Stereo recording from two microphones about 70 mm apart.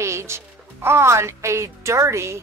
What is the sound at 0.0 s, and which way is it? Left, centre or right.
Music, right.